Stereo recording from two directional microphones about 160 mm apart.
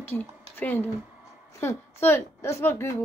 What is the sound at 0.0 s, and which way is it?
A woman's voice, 10° left (ahead or behind).